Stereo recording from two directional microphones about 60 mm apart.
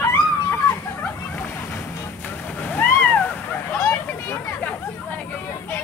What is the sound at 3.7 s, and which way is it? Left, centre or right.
Vehicle, left.